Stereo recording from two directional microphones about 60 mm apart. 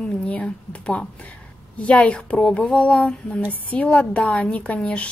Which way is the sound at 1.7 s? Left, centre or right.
Left.